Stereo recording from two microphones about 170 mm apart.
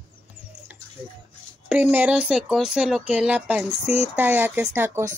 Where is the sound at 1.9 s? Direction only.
10° right (ahead or behind).